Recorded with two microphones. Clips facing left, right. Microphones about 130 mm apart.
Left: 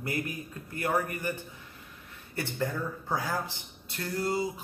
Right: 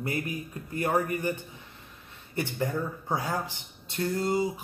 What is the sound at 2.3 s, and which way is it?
A man's voice, 20° right (ahead or behind).